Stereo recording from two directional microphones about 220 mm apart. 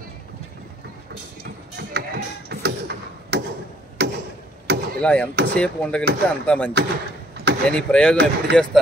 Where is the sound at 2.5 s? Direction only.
50° right (ahead or behind).